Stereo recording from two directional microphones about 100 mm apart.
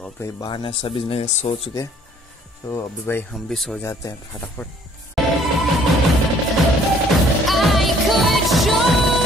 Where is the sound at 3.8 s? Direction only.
30° left (ahead or behind).